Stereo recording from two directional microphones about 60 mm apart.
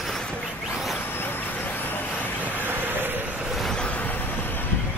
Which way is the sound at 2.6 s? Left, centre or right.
Right.